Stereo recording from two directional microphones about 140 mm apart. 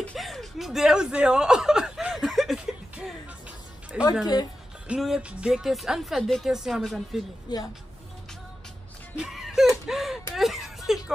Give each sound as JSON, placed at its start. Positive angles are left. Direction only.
{"t": 0.0, "sound": "chuckle", "side_deg": 5}
{"t": 3.9, "sound": "music", "side_deg": -5}
{"t": 4.8, "sound": "speech", "side_deg": -5}
{"t": 7.5, "sound": "speech", "side_deg": 30}
{"t": 9.1, "sound": "music", "side_deg": -5}
{"t": 9.8, "sound": "a sound", "side_deg": 0}
{"t": 10.3, "sound": "whimper", "side_deg": 0}